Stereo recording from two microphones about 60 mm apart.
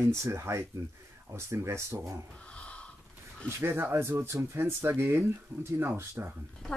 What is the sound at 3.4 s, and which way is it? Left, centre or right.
Speech, right.